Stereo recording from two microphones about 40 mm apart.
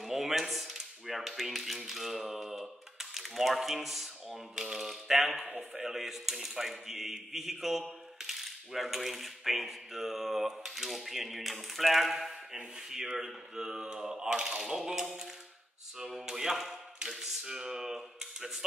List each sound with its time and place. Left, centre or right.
0.0 s typewriter: centre
5.6 s speech: centre
12.5 s a sound: centre